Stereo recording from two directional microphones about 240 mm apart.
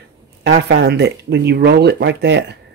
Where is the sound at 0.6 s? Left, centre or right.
Right.